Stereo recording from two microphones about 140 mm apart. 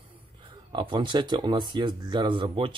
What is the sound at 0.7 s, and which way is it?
Speech, 35° right (ahead or behind).